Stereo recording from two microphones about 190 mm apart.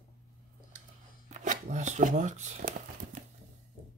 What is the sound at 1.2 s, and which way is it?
Shuffling cards, 40° right (ahead or behind).